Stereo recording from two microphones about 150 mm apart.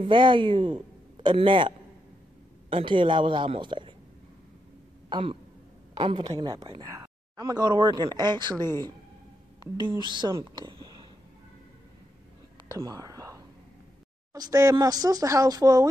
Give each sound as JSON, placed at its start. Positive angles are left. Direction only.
{"t": 0.0, "sound": "speech", "side_deg": -35}
{"t": 2.7, "sound": "speech", "side_deg": -35}
{"t": 5.1, "sound": "a woman's voice", "side_deg": -40}
{"t": 12.6, "sound": "whispering", "side_deg": -25}
{"t": 14.3, "sound": "speech", "side_deg": -25}